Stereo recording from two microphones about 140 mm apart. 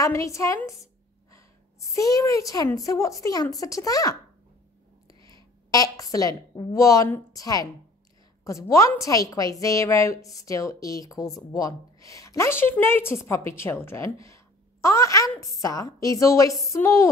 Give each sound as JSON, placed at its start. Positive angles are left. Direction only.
{"t": 0.0, "sound": "a woman's voice", "side_deg": 20}
{"t": 5.7, "sound": "a woman's voice", "side_deg": 25}
{"t": 14.2, "sound": "a sound", "side_deg": 20}
{"t": 15.6, "sound": "a woman's voice", "side_deg": 25}